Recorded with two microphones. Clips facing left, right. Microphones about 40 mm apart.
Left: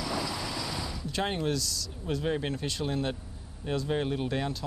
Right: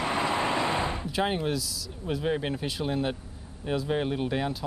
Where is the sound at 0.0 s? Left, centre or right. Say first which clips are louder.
Right 6 dB; right.